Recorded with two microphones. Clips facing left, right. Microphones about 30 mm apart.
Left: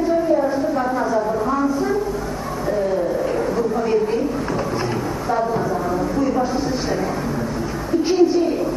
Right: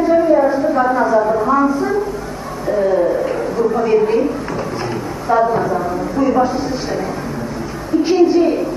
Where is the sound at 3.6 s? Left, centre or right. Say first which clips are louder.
Right 4 dB; centre.